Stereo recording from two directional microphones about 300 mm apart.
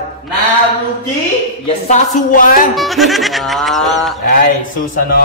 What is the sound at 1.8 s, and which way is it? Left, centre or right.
Speech, left.